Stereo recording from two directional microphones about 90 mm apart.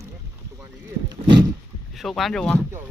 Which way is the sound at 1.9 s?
Centre (ahead or behind).